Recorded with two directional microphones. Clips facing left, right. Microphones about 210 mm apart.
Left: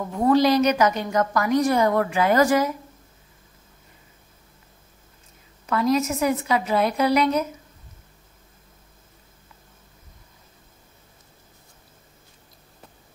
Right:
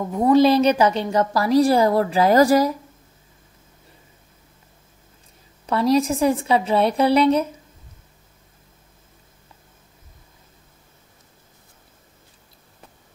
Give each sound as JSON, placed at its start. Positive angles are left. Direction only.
{"t": 0.1, "sound": "a woman's voice", "side_deg": -20}
{"t": 5.7, "sound": "a woman's voice", "side_deg": -30}